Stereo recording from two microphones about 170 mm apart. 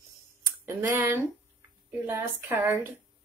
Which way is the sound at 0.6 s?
15° right (ahead or behind).